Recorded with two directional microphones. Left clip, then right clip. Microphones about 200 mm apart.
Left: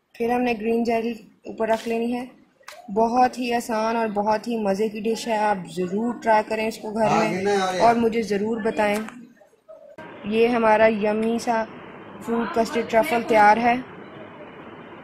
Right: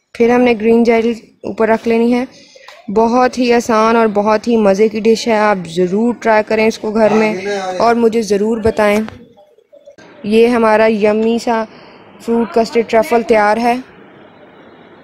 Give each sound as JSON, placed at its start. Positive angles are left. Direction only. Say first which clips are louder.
{"t": 0.2, "sound": "speech", "louder": "right 12 dB", "side_deg": -40}
{"t": 7.8, "sound": "speech", "louder": "right 9 dB", "side_deg": -50}
{"t": 10.3, "sound": "speech", "louder": "right 8 dB", "side_deg": -45}